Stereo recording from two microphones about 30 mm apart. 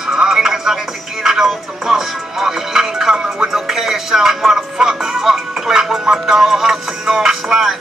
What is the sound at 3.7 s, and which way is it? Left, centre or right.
Music, centre.